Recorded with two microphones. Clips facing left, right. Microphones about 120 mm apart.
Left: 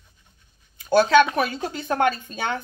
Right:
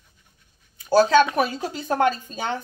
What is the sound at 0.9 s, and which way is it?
Speech, 35° right (ahead or behind).